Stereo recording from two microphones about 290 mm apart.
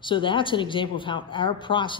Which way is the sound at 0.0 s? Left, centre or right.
Centre.